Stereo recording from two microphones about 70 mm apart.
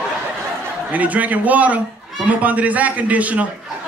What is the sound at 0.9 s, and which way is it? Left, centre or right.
A man's voice, right.